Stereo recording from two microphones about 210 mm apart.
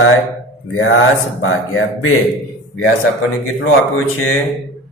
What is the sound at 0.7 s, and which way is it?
Speech, 70° left (ahead or behind).